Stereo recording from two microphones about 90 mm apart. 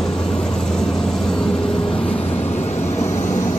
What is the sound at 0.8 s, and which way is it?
Vehicle, 5° left (ahead or behind).